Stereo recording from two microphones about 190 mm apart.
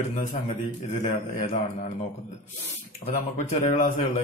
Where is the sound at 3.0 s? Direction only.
40° left (ahead or behind).